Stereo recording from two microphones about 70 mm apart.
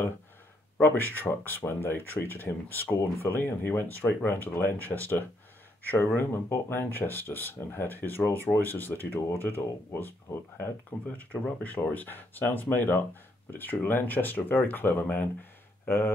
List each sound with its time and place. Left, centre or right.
0.7 s speech: left
10.6 s speech: left
15.9 s speech: left